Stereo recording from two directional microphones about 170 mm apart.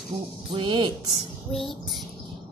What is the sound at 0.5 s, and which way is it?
Speech, 30° right (ahead or behind).